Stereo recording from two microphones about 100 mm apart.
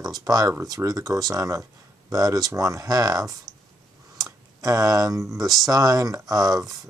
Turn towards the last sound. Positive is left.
turn(degrees=-35)  # may be behind; listen again after turning